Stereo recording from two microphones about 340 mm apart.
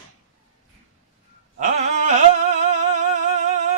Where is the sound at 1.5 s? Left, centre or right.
Right.